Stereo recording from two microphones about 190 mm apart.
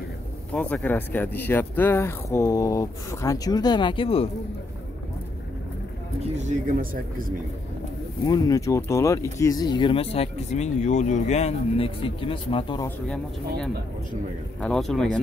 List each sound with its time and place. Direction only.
0.5 s speech: 5° left (ahead or behind); by 4.3 s 30° left (ahead or behind)
6.3 s speech: 40° right (ahead or behind)
8.3 s speech: 20° left (ahead or behind)
12.8 s speech: 5° left (ahead or behind)